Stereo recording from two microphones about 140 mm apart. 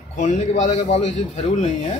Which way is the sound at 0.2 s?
55° left (ahead or behind).